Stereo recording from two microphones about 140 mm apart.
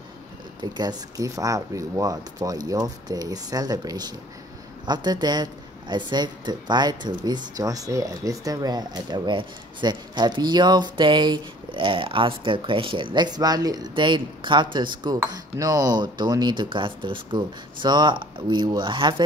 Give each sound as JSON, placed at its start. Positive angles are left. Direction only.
{"t": 0.6, "sound": "speech", "side_deg": -30}